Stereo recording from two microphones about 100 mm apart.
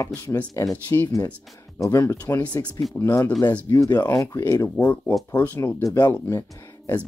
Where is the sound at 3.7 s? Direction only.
45° left (ahead or behind).